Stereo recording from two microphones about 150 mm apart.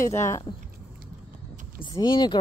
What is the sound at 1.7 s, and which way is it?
Speech, 30° left (ahead or behind).